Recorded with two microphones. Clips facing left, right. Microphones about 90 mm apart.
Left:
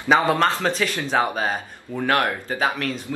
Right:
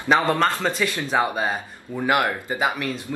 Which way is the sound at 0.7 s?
5° right (ahead or behind).